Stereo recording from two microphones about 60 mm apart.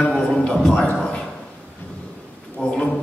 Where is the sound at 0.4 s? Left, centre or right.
Centre.